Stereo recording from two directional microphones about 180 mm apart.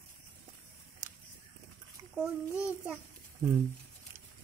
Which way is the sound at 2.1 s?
5° right (ahead or behind).